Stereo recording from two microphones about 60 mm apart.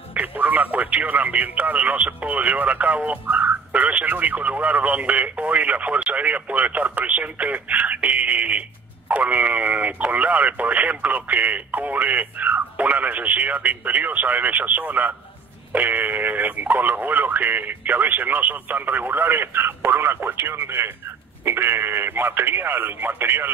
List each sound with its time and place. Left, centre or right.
0.1 s speech: right